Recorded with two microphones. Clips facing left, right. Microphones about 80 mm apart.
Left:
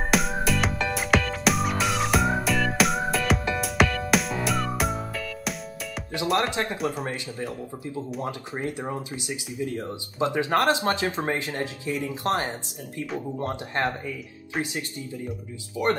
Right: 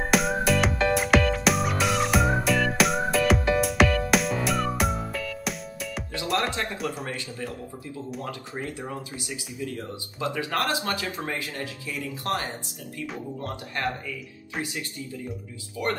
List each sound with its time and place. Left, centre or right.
0.1 s music: centre
6.5 s speech: left